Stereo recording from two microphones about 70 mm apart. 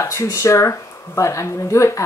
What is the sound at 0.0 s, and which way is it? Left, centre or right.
Speech, left.